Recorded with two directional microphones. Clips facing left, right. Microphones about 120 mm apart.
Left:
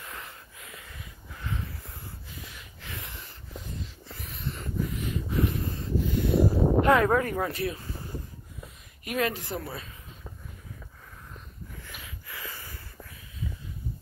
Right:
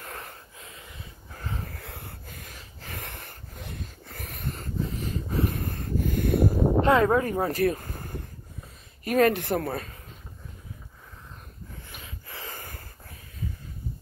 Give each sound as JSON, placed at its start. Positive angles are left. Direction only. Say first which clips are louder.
{"t": 0.0, "sound": "wheeze", "louder": "right 2 dB", "side_deg": -45}
{"t": 0.6, "sound": "wheeze", "louder": "right 1 dB", "side_deg": -30}
{"t": 1.3, "sound": "wheeze", "louder": "even", "side_deg": -40}
{"t": 1.7, "sound": "wheeze", "louder": "right 3 dB", "side_deg": -70}
{"t": 2.2, "sound": "wheeze", "louder": "even", "side_deg": -50}
{"t": 3.0, "sound": "a sound", "louder": "right 3 dB", "side_deg": -55}
{"t": 4.8, "sound": "dog", "louder": "even", "side_deg": -35}
{"t": 5.5, "sound": "a sound", "louder": "even", "side_deg": -55}
{"t": 6.8, "sound": "speech", "louder": "right 1 dB", "side_deg": -25}
{"t": 7.5, "sound": "a sound", "louder": "right 7 dB", "side_deg": -50}
{"t": 9.0, "sound": "speech", "louder": "right 8 dB", "side_deg": -40}
{"t": 9.3, "sound": "speech", "louder": "right 8 dB", "side_deg": -60}
{"t": 11.9, "sound": "wheeze", "louder": "even", "side_deg": -35}